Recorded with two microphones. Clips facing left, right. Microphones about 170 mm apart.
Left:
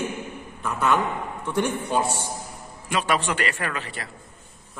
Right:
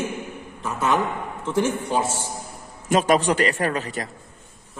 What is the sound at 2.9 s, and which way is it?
A man's voice, 40° right (ahead or behind).